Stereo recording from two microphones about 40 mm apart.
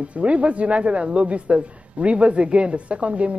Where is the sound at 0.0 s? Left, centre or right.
Right.